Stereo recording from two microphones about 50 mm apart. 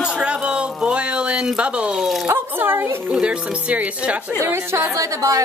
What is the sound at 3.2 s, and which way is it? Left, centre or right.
Speech, right.